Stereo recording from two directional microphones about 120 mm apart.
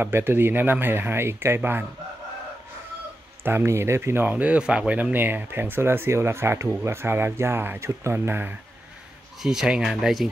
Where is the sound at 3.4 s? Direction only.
20° right (ahead or behind).